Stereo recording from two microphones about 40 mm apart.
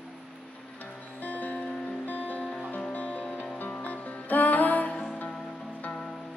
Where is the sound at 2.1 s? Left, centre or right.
Left.